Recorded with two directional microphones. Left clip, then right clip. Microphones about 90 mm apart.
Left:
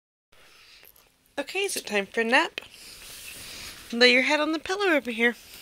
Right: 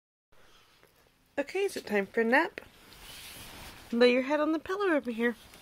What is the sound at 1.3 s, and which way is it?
Speech, 40° right (ahead or behind).